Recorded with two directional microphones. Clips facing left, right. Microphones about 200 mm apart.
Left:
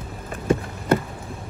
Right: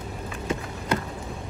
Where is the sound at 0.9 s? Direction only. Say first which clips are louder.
Left 7 dB; 55° left (ahead or behind).